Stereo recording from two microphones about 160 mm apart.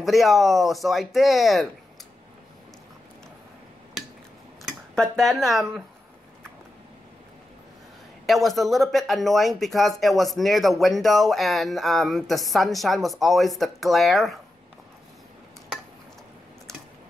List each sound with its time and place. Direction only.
0.0 s speech: centre (ahead or behind)
4.6 s speech: 5° left (ahead or behind)
8.3 s speech: centre (ahead or behind)